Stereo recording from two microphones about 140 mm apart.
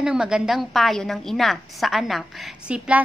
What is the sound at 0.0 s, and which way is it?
A woman's voice, 5° right (ahead or behind).